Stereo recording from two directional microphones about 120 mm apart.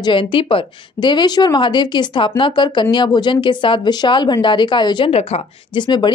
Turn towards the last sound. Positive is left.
turn(degrees=40)  # may be behind; listen again after turning